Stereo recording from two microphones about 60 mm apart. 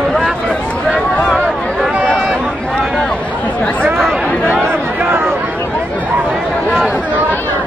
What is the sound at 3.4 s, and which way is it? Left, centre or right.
Chatter, left.